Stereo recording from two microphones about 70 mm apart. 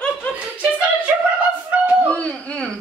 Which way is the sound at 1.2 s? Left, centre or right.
Centre.